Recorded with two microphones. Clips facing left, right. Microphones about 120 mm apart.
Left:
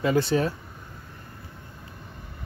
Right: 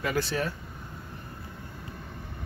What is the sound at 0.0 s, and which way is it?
Speech, 25° left (ahead or behind).